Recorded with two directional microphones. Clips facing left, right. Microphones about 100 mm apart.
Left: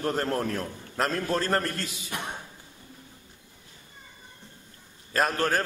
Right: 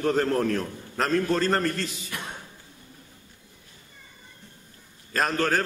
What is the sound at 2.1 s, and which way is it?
Speech, 25° left (ahead or behind).